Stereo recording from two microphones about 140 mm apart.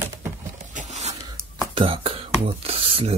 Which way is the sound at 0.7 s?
55° right (ahead or behind).